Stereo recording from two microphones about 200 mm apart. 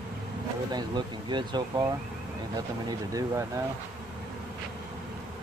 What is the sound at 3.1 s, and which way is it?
Speech, 15° right (ahead or behind).